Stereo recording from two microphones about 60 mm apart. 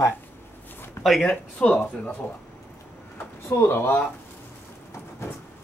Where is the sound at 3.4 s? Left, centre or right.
Left.